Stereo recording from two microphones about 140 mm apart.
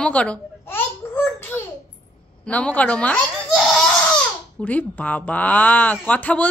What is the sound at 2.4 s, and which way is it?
Baby laughter, 10° left (ahead or behind).